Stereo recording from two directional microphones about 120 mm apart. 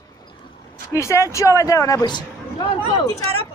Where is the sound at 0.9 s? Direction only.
25° left (ahead or behind).